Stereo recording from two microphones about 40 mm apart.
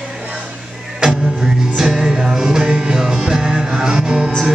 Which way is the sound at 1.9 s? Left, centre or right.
Centre.